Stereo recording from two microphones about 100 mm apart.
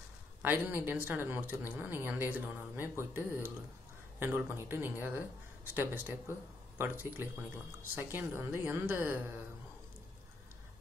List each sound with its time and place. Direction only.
0.4 s speech: 20° right (ahead or behind)